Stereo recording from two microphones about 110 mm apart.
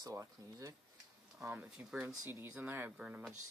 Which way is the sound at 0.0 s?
30° right (ahead or behind).